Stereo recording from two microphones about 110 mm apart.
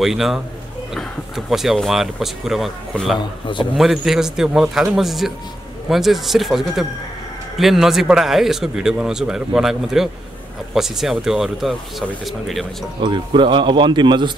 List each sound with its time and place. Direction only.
0.0 s speech: centre (ahead or behind)
3.2 s a man's voice: 45° left (ahead or behind)
3.7 s speech: centre (ahead or behind)
13.0 s a man's voice: 45° right (ahead or behind)